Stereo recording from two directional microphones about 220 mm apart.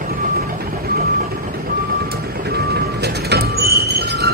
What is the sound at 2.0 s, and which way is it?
Vehicle, 45° right (ahead or behind).